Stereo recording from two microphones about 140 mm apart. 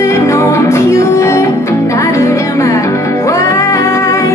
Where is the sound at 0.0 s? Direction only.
20° left (ahead or behind).